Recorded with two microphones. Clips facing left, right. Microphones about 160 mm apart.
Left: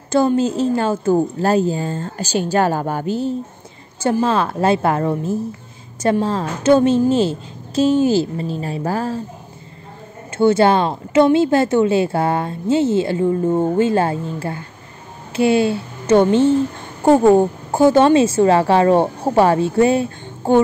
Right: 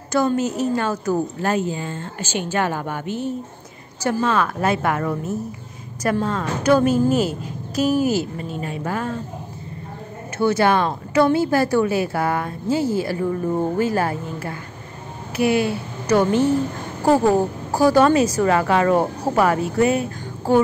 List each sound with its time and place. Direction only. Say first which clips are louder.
0.4 s a woman's voice: left 4 dB; 30° left (ahead or behind)
10.3 s a woman's voice: left 4 dB; 25° left (ahead or behind)